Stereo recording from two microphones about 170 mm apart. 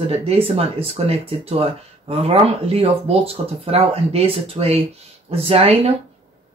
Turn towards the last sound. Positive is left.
turn(degrees=-35)  # may be behind; listen again after turning